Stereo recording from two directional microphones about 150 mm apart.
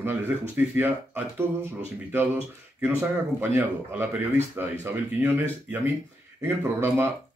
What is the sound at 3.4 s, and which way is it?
Speech, 15° right (ahead or behind).